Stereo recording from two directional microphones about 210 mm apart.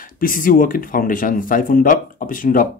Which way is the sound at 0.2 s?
40° left (ahead or behind).